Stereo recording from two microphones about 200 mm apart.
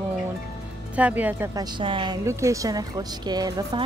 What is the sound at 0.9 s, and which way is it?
A woman's voice, 5° right (ahead or behind).